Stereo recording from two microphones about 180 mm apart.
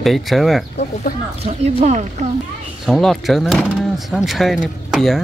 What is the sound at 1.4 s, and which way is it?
Speech, 40° right (ahead or behind).